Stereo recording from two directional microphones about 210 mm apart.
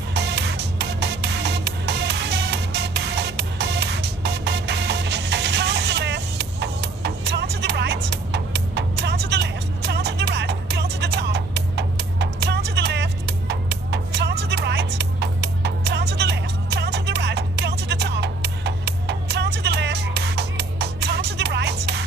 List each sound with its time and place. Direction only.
0.1 s music: 55° right (ahead or behind)